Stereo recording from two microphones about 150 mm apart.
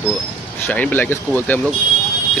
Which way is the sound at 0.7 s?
10° left (ahead or behind).